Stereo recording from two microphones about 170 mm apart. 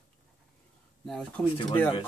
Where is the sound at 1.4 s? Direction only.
10° left (ahead or behind).